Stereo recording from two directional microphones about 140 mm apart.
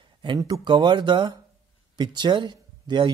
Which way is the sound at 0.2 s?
30° right (ahead or behind).